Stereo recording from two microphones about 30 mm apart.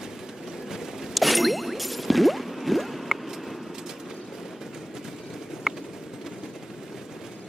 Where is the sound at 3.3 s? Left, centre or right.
Centre.